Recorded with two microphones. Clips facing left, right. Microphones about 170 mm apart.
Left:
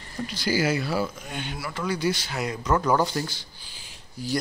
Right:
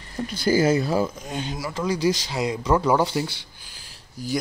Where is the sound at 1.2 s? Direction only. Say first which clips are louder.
Right 4 dB; 35° right (ahead or behind).